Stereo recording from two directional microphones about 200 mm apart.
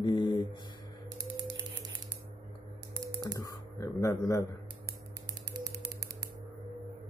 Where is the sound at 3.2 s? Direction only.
15° left (ahead or behind).